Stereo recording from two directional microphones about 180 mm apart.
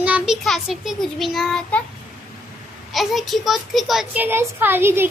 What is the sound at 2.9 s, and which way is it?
A child's voice, centre (ahead or behind).